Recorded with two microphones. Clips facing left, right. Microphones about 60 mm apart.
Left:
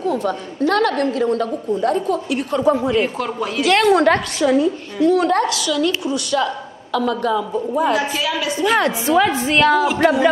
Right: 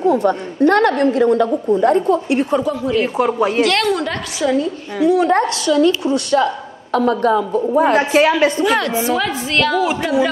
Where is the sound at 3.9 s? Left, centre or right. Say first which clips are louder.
Left 8 dB; left.